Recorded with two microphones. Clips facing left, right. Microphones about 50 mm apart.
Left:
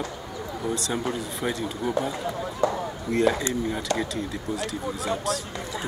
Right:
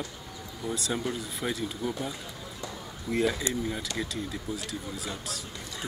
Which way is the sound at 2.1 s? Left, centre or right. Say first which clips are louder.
Left 11 dB; left.